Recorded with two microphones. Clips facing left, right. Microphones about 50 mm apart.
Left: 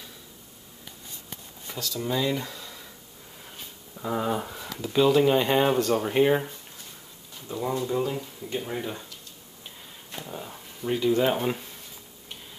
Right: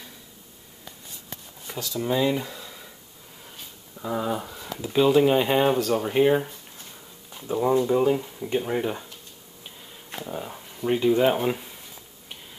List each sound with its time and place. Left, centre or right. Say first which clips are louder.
1.7 s speech: right 3 dB; centre
3.9 s speech: even; centre
4.7 s speech: right 2 dB; centre
7.3 s speech: right 7 dB; right
10.2 s speech: right 6 dB; centre